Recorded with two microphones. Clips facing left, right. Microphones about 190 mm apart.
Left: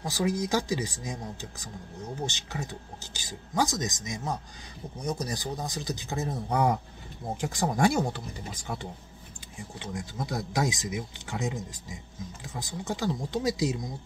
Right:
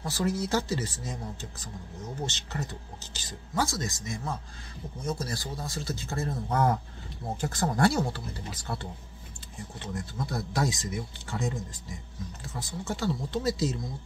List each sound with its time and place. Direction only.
0.0 s speech: 15° left (ahead or behind)